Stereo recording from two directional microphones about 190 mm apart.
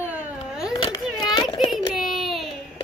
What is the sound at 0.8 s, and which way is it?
Children playing, 25° left (ahead or behind).